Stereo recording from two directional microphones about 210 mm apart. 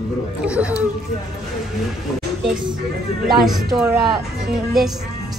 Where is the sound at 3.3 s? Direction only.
Centre (ahead or behind).